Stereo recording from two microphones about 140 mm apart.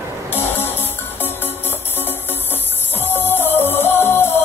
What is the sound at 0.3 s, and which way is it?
Music, 15° left (ahead or behind).